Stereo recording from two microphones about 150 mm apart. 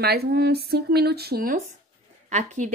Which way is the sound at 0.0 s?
90° right.